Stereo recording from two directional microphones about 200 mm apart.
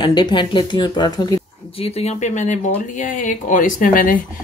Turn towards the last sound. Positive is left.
turn(degrees=45)  # may be behind; listen again after turning